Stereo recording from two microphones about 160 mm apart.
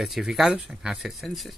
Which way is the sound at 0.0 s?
Centre (ahead or behind).